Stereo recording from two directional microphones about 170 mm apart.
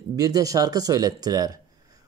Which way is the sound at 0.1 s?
20° right (ahead or behind).